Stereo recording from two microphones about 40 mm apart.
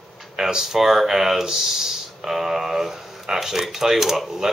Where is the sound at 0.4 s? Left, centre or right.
Centre.